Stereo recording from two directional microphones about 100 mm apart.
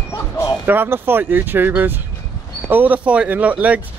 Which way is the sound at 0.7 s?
20° right (ahead or behind).